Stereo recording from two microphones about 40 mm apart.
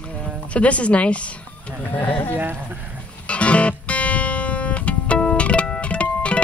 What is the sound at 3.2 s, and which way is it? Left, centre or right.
Music, left.